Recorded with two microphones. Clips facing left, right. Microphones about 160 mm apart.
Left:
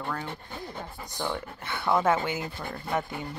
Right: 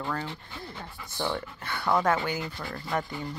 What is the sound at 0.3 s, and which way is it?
Speech, 50° left (ahead or behind).